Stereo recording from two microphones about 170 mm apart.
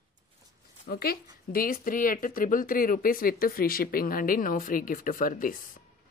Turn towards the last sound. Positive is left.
turn(degrees=55)  # may be behind; listen again after turning